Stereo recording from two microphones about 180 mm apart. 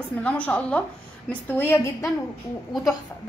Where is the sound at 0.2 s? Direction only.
10° left (ahead or behind).